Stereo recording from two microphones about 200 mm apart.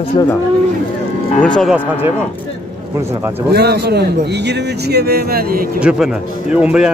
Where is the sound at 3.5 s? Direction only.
55° right (ahead or behind).